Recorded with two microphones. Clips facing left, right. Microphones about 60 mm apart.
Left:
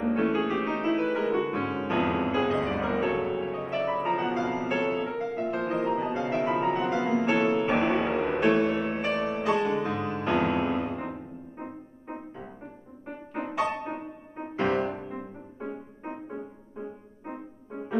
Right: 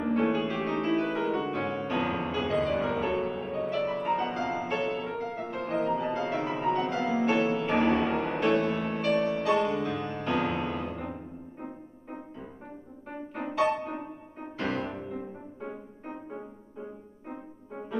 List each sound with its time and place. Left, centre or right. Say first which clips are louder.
0.1 s music: left 1 dB; centre
13.3 s music: right 2 dB; centre